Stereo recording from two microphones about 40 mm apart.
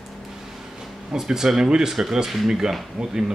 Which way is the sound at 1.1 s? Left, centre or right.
Centre.